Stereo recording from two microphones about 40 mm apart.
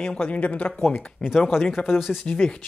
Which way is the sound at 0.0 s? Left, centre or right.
Left.